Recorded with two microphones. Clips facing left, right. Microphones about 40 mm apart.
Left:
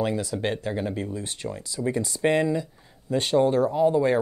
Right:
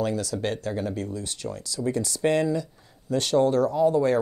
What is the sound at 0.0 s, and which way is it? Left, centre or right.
Speech, left.